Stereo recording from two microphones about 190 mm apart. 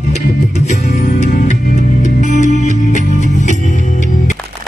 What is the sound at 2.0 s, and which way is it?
Music, 40° left (ahead or behind).